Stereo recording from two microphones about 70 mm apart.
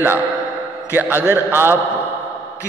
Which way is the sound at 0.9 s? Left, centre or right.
Right.